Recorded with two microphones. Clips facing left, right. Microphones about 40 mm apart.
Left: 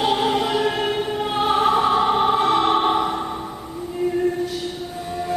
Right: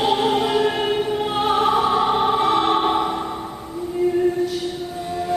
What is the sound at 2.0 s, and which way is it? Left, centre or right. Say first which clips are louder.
Opera: even; centre.